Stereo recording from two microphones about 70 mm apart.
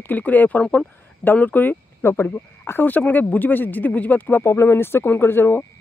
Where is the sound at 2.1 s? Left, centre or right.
Left.